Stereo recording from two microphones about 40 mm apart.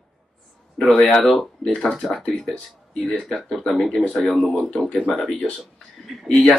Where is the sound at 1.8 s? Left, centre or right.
Centre.